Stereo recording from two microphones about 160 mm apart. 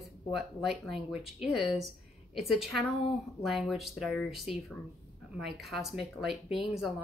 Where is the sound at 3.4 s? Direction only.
Centre (ahead or behind).